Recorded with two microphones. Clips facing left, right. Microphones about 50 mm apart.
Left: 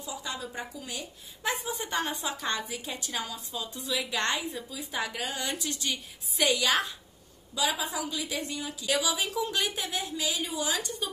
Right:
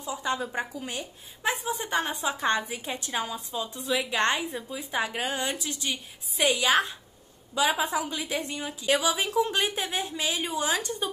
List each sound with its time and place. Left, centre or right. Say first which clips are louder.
0.0 s speech: right 7 dB; right
1.4 s a woman's voice: right 3 dB; centre
1.7 s a woman's voice: right 3 dB; right
5.5 s a woman's voice: right 1 dB; centre
7.5 s a woman's voice: right 5 dB; right